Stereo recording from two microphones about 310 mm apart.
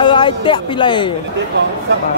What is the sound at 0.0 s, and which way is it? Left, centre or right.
Speech, centre.